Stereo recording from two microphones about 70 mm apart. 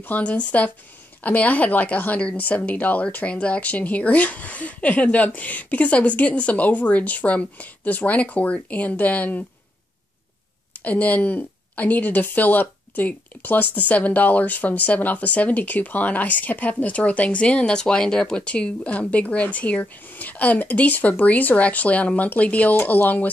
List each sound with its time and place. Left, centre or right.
0.1 s a woman's voice: centre
10.8 s a woman's voice: left